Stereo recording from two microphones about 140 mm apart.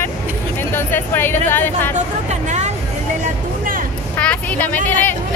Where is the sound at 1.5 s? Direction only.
15° left (ahead or behind).